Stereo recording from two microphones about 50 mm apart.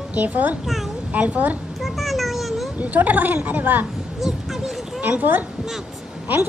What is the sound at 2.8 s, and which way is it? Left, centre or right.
A woman's voice, right.